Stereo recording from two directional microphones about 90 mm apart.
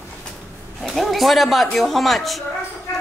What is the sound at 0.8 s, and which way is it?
Speech, centre (ahead or behind).